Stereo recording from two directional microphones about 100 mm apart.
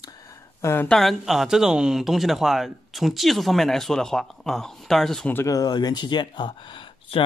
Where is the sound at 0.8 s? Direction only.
5° left (ahead or behind).